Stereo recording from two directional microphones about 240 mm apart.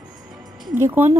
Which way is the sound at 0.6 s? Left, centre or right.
Centre.